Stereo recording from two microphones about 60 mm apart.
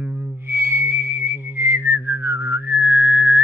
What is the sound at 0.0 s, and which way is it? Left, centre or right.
Whistle, right.